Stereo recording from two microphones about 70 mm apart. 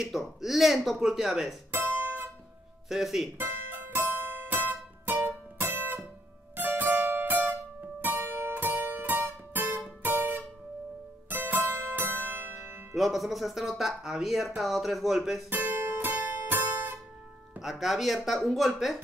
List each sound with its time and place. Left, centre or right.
0.0 s speech: centre
1.7 s guitar: right
2.9 s speech: centre
3.3 s music: right
12.9 s speech: centre
15.5 s music: right
17.6 s speech: centre